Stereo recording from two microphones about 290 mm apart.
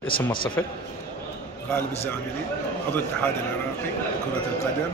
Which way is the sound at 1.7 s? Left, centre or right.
Centre.